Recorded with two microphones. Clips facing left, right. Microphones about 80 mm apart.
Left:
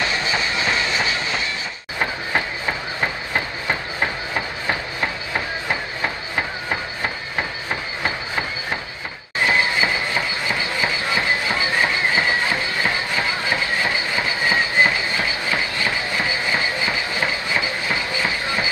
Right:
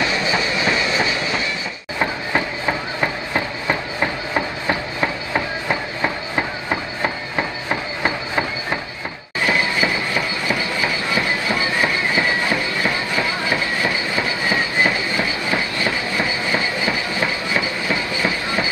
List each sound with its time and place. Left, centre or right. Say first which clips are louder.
0.0 s train: right 2 dB; centre
9.5 s train: right 1 dB; left
15.1 s train: right 2 dB; right
16.9 s train: right 1 dB; left